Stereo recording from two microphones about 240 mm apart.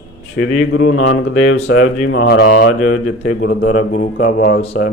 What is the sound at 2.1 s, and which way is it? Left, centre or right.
Speech, left.